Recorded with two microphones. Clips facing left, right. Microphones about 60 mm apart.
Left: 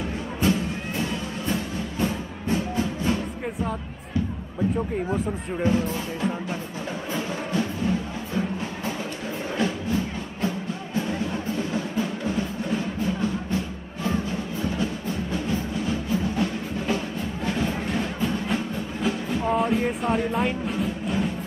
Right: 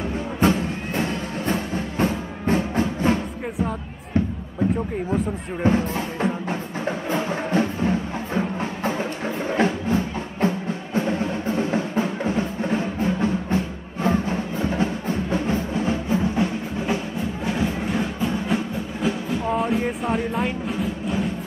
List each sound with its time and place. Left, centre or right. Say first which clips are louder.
0.4 s music: right 3 dB; right
5.6 s speech: right 3 dB; right
7.1 s music: right 4 dB; right
9.6 s music: right 4 dB; right
17.6 s music: right 3 dB; centre
19.0 s music: right 1 dB; centre